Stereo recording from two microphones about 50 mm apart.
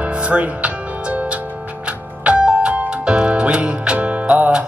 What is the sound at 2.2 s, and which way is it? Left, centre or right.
Music, right.